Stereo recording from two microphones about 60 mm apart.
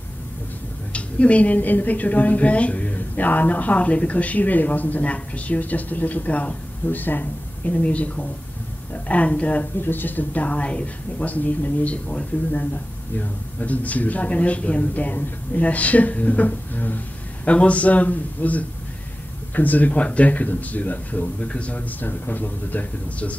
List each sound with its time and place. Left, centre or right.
0.9 s a woman's voice: left
9.8 s a woman's voice: left